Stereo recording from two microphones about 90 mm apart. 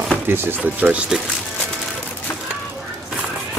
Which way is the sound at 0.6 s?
15° right (ahead or behind).